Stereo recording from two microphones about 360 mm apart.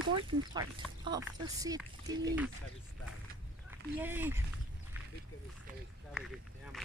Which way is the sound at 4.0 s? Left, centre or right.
Centre.